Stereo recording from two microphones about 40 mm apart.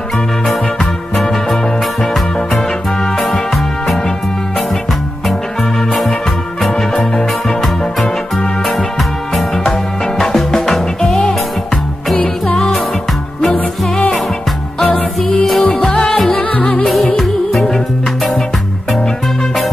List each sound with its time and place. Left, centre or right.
3.2 s music: centre
6.8 s music: centre
10.3 s music: centre
13.4 s music: centre
15.6 s music: left
16.3 s music: left
17.2 s music: centre